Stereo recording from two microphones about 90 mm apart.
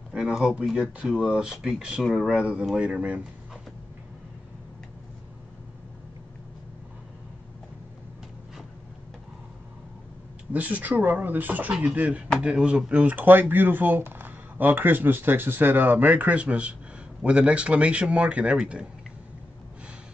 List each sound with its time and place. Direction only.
0.1 s speech: 5° right (ahead or behind)
10.5 s speech: 15° right (ahead or behind)